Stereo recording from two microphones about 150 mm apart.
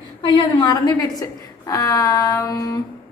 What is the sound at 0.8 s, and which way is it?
A woman's voice, 25° left (ahead or behind).